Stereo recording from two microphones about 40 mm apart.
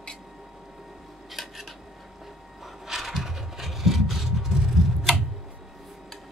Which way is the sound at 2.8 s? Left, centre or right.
Centre.